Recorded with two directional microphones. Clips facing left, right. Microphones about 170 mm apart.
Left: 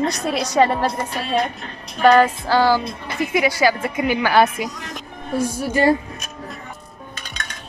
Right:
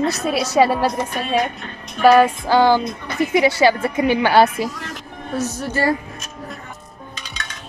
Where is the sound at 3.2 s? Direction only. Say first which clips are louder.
Right 3 dB; 25° right (ahead or behind).